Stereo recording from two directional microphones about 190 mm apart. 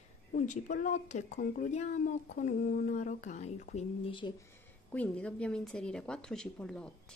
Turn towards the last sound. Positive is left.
turn(degrees=5)  # may be behind; listen again after turning